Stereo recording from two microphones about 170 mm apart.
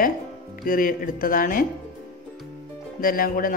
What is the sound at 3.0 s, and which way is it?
Speech, 55° left (ahead or behind).